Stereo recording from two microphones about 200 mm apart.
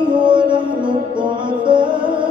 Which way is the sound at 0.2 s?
25° right (ahead or behind).